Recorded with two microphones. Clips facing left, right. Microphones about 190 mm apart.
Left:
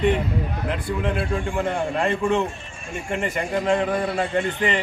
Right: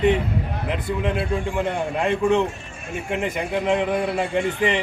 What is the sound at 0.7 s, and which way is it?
A man's voice, 5° right (ahead or behind).